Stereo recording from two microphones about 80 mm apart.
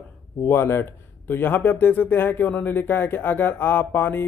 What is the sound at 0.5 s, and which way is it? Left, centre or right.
Speech, left.